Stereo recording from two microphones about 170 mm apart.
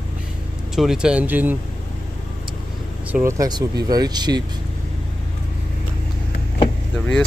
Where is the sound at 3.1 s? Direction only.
15° right (ahead or behind).